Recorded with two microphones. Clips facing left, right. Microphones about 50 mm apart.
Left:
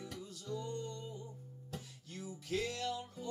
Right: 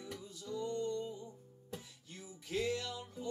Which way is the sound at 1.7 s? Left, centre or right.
Centre.